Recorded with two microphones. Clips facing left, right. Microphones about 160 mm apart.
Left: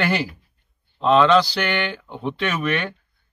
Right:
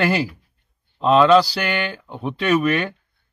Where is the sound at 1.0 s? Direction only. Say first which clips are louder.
Right 2 dB; 5° right (ahead or behind).